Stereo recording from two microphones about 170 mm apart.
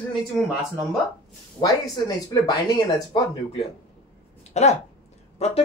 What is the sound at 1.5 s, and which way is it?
Speech, 25° left (ahead or behind).